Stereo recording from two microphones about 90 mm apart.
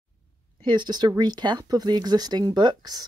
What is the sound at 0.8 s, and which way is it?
Speech, 50° right (ahead or behind).